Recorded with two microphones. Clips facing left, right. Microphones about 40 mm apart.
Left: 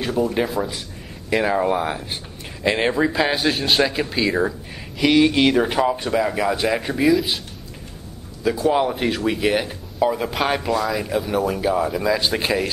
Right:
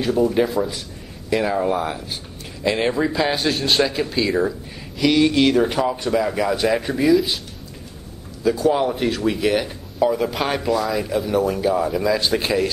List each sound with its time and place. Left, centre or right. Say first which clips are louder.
0.0 s speech: right 3 dB; centre
1.3 s speech: left 1 dB; centre
8.5 s speech: right 1 dB; centre